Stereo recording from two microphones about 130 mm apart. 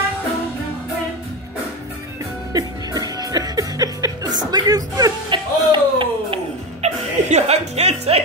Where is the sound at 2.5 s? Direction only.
30° right (ahead or behind); by 6.8 s 45° right (ahead or behind).